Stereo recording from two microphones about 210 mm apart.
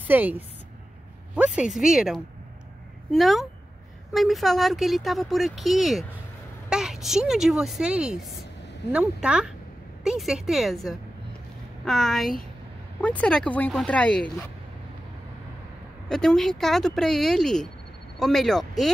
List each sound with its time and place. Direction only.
0.0 s a woman's voice: 10° right (ahead or behind)
16.1 s speech: 5° left (ahead or behind)